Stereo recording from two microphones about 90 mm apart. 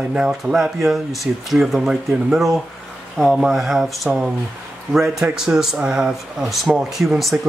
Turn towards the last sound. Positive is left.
turn(degrees=0)  # may be behind; listen again after turning